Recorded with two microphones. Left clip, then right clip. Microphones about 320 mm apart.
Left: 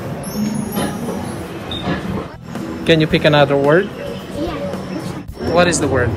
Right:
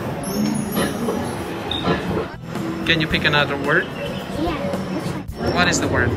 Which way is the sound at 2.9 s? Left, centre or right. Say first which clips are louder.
Left 6 dB; centre.